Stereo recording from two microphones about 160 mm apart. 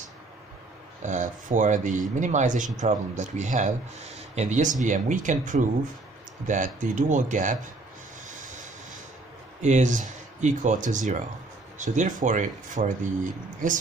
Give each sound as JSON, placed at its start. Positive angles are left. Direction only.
{"t": 1.0, "sound": "speech", "side_deg": -50}
{"t": 9.6, "sound": "speech", "side_deg": -50}